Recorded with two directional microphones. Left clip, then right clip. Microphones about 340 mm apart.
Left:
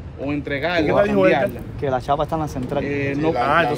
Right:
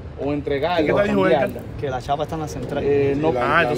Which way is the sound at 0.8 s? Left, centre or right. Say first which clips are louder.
Left 4 dB; centre.